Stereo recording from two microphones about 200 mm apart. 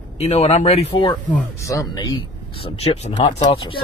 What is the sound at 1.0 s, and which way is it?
Speech, 15° left (ahead or behind).